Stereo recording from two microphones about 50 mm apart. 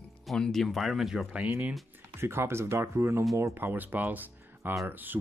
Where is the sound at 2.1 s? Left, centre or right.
Right.